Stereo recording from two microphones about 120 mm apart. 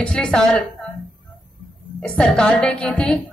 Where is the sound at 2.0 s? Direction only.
5° left (ahead or behind).